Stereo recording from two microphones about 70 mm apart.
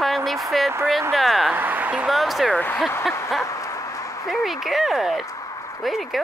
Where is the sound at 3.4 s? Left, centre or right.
Left.